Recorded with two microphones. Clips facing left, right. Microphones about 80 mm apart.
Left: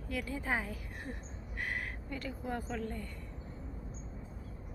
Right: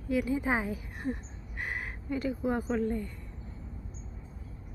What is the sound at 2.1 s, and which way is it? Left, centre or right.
A woman's voice, centre.